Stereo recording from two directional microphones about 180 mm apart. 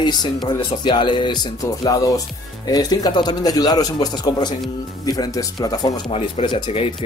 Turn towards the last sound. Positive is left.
turn(degrees=25)  # may be behind; listen again after turning